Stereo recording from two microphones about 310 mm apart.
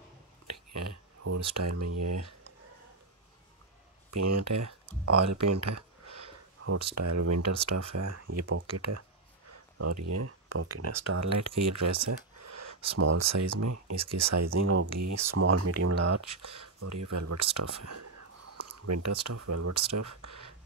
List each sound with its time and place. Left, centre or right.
0.5 s a sound: right
4.1 s speech: right
7.0 s speech: right